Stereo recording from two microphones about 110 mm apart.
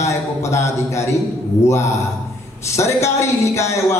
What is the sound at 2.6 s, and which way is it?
A man's voice, 25° left (ahead or behind).